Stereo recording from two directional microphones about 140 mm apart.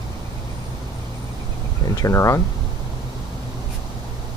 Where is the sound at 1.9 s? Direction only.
25° left (ahead or behind).